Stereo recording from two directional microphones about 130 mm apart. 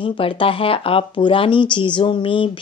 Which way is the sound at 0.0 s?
45° left (ahead or behind).